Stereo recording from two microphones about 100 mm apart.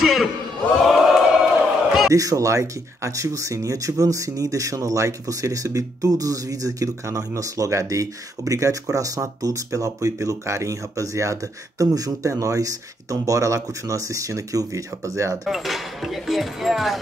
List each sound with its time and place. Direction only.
0.0 s a sound: centre (ahead or behind)
0.8 s chant: centre (ahead or behind)
2.0 s speech: 35° right (ahead or behind)
15.4 s speech: centre (ahead or behind)